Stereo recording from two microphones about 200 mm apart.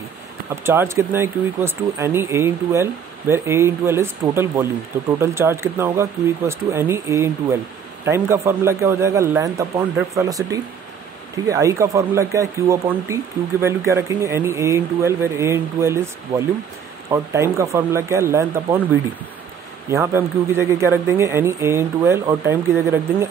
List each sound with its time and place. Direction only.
0.7 s speech: 10° right (ahead or behind)
19.9 s speech: 10° right (ahead or behind)